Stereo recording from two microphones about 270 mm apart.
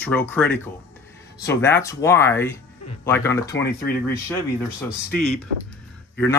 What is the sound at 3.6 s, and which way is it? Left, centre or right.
Speech, left.